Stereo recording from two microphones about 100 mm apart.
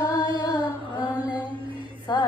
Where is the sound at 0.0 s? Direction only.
40° left (ahead or behind).